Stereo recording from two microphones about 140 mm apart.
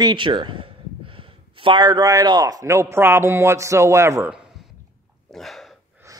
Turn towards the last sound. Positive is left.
turn(degrees=0)  # may be behind; listen again after turning